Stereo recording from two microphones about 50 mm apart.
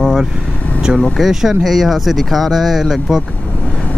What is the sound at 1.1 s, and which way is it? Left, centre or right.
Speech, centre.